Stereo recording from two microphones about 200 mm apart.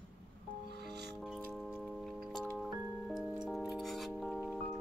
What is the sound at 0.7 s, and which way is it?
Music, 55° right (ahead or behind).